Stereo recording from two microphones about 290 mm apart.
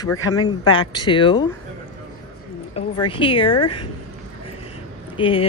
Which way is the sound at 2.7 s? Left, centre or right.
Centre.